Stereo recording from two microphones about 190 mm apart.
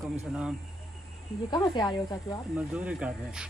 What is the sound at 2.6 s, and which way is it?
Speech, 5° right (ahead or behind).